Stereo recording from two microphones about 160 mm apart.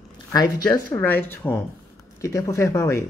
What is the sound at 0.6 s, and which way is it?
Speech, 10° left (ahead or behind).